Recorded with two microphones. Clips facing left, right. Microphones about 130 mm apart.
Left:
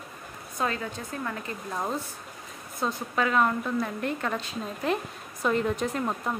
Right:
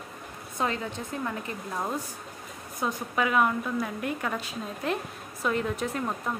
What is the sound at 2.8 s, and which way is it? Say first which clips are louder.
A woman's voice: even; 15° right (ahead or behind).